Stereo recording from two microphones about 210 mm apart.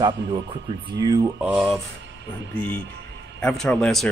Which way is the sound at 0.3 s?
20° right (ahead or behind).